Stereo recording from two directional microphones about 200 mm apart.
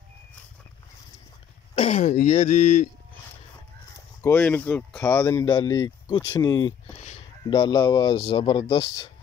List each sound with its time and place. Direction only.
1.8 s speech: 35° left (ahead or behind)
4.2 s speech: 10° left (ahead or behind)